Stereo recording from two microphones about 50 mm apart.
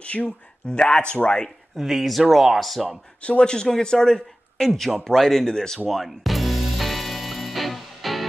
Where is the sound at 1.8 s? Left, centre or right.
Centre.